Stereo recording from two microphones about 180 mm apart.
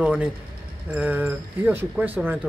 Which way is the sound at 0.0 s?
5° right (ahead or behind).